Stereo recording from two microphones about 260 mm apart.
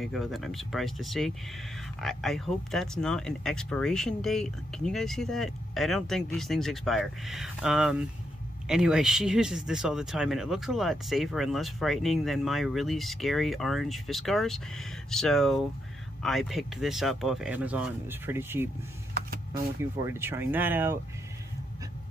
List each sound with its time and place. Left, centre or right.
0.0 s speech: centre
19.1 s a sound: right
19.8 s speech: centre